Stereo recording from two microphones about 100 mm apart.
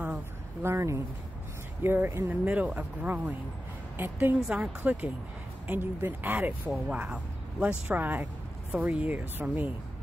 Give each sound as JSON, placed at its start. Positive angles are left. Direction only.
{"t": 0.6, "sound": "speech", "side_deg": -25}